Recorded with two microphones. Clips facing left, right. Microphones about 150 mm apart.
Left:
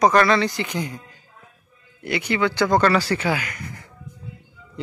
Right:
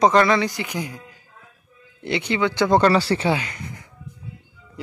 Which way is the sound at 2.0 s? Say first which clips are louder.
Even; 25° right (ahead or behind).